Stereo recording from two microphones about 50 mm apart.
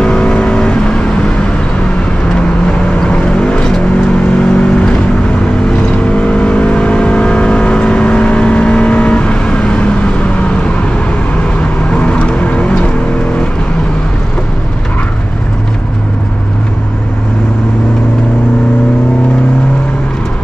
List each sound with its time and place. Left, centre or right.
0.0 s vehicle: left
2.6 s vehicle: centre
6.0 s vehicle: left